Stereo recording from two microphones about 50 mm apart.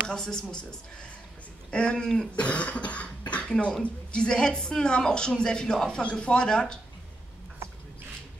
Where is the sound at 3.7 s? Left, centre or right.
Centre.